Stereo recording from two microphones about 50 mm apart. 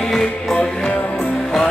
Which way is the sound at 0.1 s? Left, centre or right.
Centre.